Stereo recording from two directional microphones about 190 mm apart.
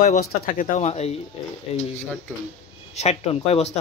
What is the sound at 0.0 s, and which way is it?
Speech, 45° left (ahead or behind).